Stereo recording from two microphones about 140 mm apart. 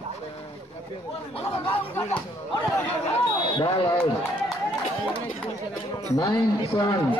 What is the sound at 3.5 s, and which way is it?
Speech, 30° left (ahead or behind).